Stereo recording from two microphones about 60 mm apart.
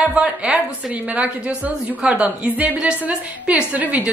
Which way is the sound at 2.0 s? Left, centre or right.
Right.